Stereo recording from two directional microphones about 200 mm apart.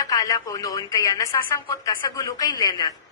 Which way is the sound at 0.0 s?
20° left (ahead or behind).